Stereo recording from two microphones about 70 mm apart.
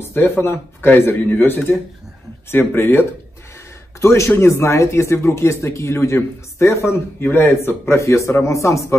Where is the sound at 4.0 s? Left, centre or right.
Left.